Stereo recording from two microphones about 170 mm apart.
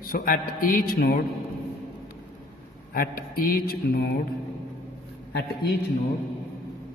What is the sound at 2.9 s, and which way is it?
A man's voice, 60° left (ahead or behind).